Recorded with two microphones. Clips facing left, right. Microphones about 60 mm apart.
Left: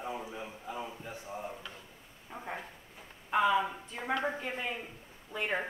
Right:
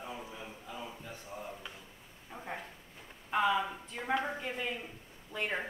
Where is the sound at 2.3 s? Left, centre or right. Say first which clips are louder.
Left 1 dB; centre.